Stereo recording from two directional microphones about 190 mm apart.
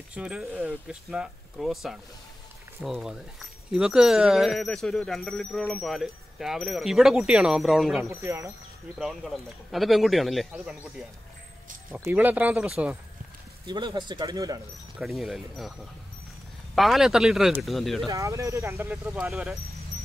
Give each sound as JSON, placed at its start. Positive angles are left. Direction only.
{"t": 0.1, "sound": "speech", "side_deg": -5}
{"t": 8.1, "sound": "speech", "side_deg": -15}
{"t": 8.9, "sound": "speech", "side_deg": 0}
{"t": 13.7, "sound": "speech", "side_deg": -25}
{"t": 15.0, "sound": "speech", "side_deg": 0}
{"t": 16.7, "sound": "speech", "side_deg": 0}
{"t": 18.0, "sound": "speech", "side_deg": -15}